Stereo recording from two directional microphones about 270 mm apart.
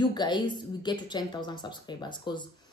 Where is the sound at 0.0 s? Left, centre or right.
Centre.